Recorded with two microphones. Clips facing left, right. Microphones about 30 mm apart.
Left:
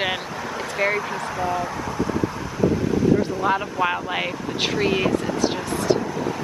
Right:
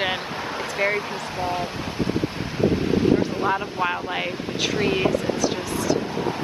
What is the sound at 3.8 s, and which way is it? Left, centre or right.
Speech, centre.